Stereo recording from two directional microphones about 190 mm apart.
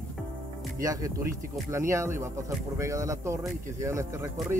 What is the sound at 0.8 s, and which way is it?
Speech, 20° right (ahead or behind).